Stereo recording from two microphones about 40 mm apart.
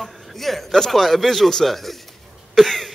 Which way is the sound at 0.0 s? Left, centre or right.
Centre.